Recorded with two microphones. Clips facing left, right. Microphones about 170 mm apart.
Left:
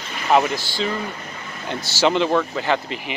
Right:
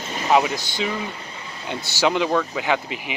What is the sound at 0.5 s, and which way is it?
Speech, 20° right (ahead or behind).